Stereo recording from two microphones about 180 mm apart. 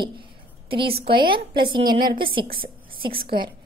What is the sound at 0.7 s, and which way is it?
A woman's voice, 30° right (ahead or behind).